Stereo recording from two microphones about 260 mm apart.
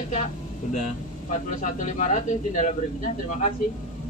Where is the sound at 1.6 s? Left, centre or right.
Left.